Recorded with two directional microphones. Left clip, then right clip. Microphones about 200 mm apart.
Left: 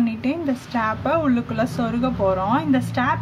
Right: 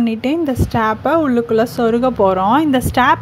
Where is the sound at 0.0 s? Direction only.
40° right (ahead or behind).